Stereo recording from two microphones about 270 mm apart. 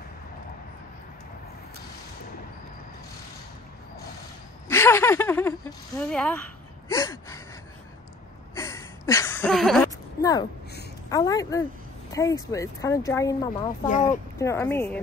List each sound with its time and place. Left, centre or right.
4.6 s a sound: centre
5.9 s gasp: centre
8.5 s a sound: centre
11.1 s speech: centre
13.8 s speech: left
14.4 s speech: centre